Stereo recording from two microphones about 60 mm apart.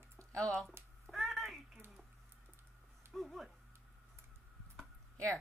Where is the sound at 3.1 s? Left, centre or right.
Centre.